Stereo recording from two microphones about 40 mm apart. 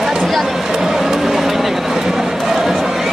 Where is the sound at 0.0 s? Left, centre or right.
Centre.